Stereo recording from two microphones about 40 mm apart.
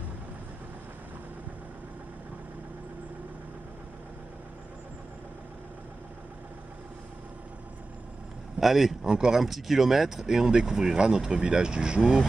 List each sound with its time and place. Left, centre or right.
8.5 s speech: centre
9.0 s speech: centre
9.4 s speech: centre